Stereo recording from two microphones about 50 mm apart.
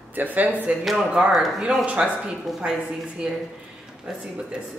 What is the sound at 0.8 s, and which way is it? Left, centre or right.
Speech, centre.